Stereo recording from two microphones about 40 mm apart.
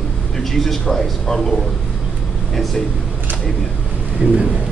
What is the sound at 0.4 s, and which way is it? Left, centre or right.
Speech, centre.